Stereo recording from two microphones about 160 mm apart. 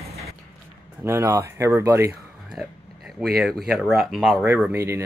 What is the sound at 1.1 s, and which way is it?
Speech, 20° right (ahead or behind).